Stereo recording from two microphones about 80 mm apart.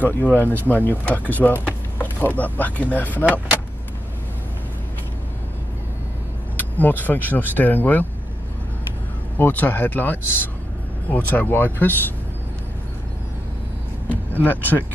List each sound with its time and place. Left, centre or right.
0.0 s speech: left
6.6 s speech: left
9.4 s speech: left
14.0 s vehicle: left